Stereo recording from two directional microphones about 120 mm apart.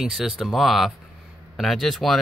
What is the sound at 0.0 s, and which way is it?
Speech, centre (ahead or behind).